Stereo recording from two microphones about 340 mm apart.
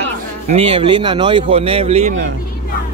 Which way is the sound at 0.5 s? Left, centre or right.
Centre.